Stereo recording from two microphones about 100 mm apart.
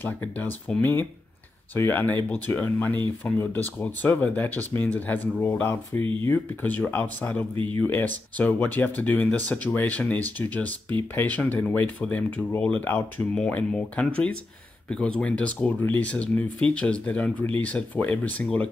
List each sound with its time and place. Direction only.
0.0 s speech: 20° left (ahead or behind)
7.5 s speech: 65° right (ahead or behind)
7.8 s speech: 15° left (ahead or behind)